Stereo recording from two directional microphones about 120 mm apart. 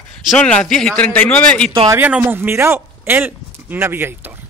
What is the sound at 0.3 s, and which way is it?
A man's voice, 5° left (ahead or behind).